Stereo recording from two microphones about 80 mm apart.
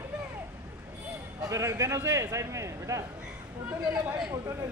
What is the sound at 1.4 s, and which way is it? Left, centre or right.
A man's voice, right.